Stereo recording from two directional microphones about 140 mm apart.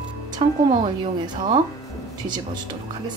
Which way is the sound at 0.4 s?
40° right (ahead or behind).